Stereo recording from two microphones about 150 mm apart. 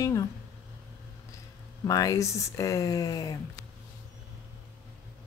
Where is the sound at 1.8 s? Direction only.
25° left (ahead or behind).